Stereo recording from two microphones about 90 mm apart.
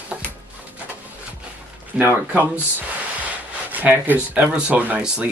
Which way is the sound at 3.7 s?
20° right (ahead or behind).